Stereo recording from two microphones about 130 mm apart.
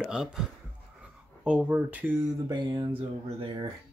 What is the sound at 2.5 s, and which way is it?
Speech, 35° right (ahead or behind).